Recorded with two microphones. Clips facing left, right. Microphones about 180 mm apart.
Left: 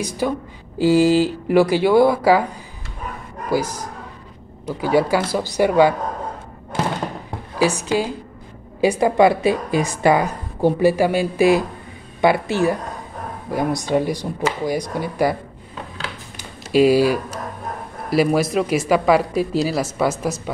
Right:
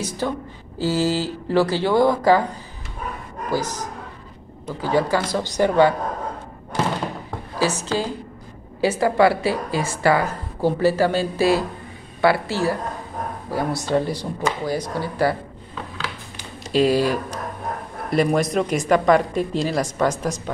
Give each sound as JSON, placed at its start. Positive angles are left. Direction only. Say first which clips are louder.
{"t": 0.2, "sound": "a woman's voice", "louder": "left 4 dB", "side_deg": 10}
{"t": 3.4, "sound": "a woman's voice", "louder": "left 3 dB", "side_deg": 10}
{"t": 7.5, "sound": "a woman's voice", "louder": "left 4 dB", "side_deg": 15}
{"t": 16.7, "sound": "a woman's voice", "louder": "left 4 dB", "side_deg": 10}